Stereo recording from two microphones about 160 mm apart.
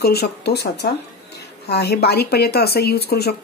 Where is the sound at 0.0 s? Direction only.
85° left.